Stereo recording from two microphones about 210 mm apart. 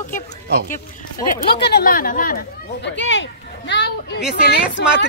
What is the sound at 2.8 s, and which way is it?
Speech, 60° left (ahead or behind).